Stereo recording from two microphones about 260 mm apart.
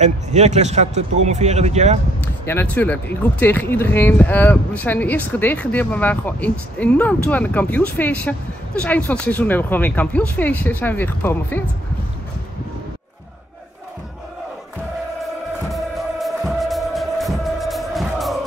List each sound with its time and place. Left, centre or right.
0.0 s speech: right
2.2 s speech: centre
15.7 s music: centre